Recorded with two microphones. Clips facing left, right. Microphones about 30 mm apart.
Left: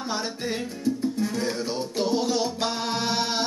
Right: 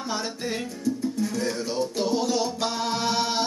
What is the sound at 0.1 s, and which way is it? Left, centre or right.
Music, centre.